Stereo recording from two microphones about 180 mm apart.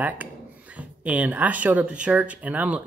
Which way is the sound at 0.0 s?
10° right (ahead or behind).